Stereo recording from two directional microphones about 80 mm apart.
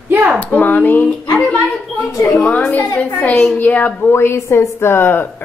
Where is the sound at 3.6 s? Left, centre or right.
Left.